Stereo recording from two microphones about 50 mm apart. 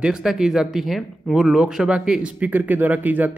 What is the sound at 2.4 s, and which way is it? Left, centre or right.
Speech, right.